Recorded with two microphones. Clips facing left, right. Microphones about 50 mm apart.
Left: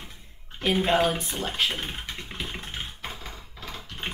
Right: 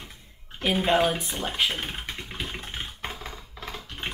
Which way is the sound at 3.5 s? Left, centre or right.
Right.